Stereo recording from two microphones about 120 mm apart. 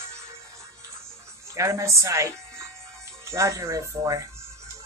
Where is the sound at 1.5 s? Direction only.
25° right (ahead or behind).